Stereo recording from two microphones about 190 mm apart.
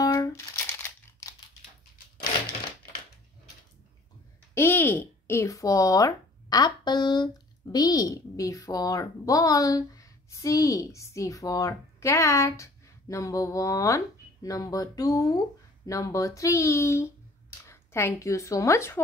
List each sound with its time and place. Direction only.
0.0 s crumpling: 15° left (ahead or behind)
4.6 s a woman's voice: 10° left (ahead or behind)